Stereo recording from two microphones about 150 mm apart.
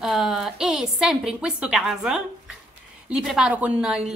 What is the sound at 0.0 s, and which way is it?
A woman's voice, 5° right (ahead or behind).